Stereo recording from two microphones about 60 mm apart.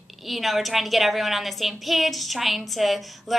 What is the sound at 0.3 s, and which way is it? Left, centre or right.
A woman's voice, centre.